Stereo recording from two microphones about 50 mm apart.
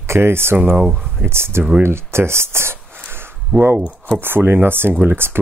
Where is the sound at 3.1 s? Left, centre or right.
Right.